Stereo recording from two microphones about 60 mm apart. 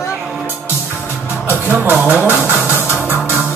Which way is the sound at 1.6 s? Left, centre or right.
Right.